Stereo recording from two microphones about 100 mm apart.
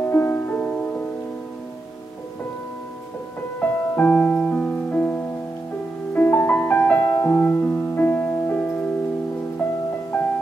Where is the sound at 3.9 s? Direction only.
20° left (ahead or behind).